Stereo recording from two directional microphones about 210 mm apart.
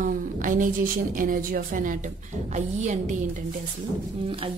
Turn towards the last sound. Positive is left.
turn(degrees=-25)  # may be behind; listen again after turning